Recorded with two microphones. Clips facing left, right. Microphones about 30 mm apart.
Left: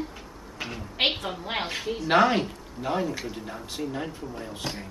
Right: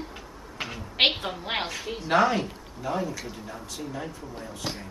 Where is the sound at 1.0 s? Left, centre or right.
Right.